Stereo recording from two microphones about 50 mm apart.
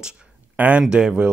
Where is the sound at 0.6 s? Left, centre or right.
Right.